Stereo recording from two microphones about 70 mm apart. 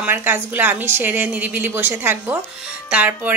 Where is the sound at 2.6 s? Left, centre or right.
Centre.